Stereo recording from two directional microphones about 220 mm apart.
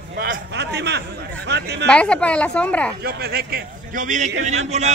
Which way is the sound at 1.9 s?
5° left (ahead or behind).